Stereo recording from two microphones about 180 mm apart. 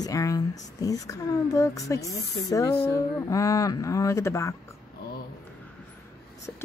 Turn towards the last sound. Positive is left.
turn(degrees=10)  # may be behind; listen again after turning